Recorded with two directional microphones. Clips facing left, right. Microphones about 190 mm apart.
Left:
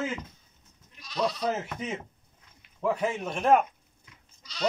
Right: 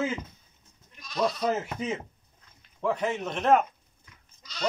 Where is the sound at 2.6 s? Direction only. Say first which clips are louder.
Left 1 dB; 10° left (ahead or behind).